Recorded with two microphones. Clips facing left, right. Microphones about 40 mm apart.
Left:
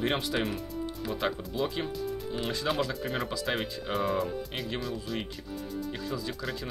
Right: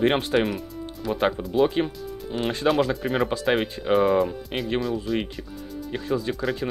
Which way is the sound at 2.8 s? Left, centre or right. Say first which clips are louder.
Right 8 dB; right.